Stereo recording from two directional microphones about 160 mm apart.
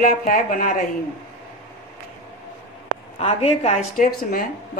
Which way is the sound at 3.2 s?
35° left (ahead or behind).